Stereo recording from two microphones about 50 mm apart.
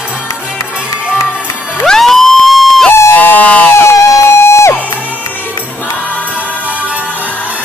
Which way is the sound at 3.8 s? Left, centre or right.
Left.